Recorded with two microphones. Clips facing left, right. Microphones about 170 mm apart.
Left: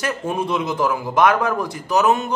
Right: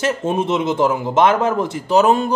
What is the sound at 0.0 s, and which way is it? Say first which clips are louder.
A man's voice: right 4 dB; 25° right (ahead or behind).